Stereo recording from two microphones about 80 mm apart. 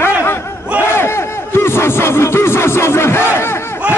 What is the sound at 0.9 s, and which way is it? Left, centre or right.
Speech, left.